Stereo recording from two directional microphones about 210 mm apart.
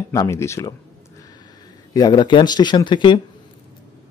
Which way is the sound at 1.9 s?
20° left (ahead or behind).